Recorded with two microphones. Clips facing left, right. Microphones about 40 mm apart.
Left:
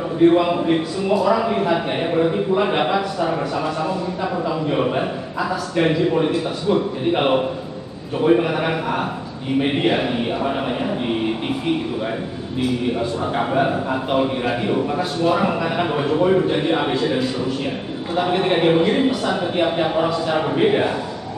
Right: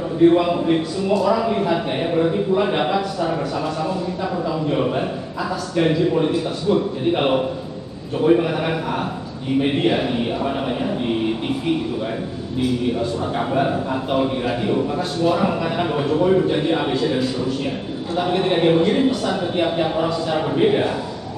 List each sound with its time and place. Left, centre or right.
0.2 s a man's voice: centre
13.2 s a man's voice: left